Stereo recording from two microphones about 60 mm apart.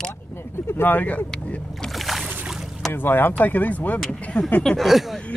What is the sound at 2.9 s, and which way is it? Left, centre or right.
Speech, left.